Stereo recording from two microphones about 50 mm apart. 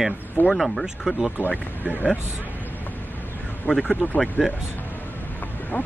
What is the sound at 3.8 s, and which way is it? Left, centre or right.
Speech, left.